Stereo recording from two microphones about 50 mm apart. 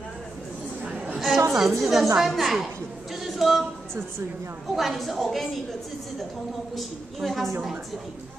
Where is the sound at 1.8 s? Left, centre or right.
Centre.